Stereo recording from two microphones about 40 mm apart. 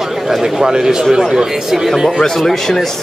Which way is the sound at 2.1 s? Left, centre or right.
Centre.